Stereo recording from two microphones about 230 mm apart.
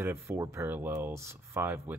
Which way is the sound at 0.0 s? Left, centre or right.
Centre.